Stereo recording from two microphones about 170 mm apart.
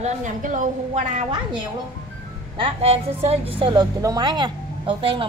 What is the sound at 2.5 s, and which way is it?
A woman's voice, 35° right (ahead or behind).